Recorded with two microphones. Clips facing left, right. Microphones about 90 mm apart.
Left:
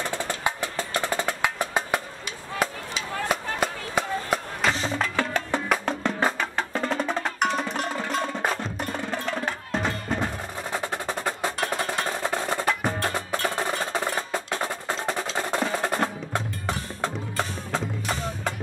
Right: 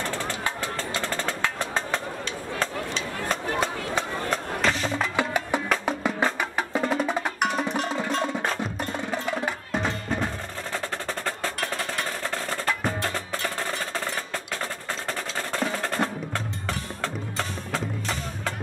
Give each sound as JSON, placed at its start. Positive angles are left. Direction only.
{"t": 0.4, "sound": "music", "side_deg": 15}
{"t": 5.1, "sound": "music", "side_deg": -15}
{"t": 6.5, "sound": "percussion", "side_deg": -10}
{"t": 8.9, "sound": "music", "side_deg": -15}
{"t": 10.2, "sound": "percussion", "side_deg": 15}